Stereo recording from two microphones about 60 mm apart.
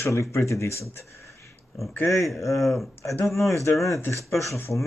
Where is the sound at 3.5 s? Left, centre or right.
Left.